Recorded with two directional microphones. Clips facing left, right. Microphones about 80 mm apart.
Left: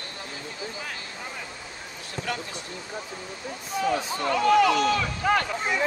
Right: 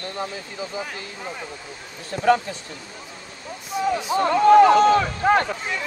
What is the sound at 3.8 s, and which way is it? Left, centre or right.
Speech, centre.